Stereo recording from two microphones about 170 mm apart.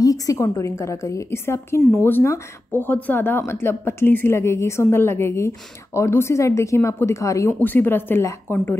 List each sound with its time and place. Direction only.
0.0 s a woman's voice: 20° left (ahead or behind)